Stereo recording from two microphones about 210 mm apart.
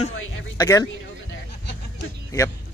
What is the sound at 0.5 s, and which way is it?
Speech, 15° left (ahead or behind).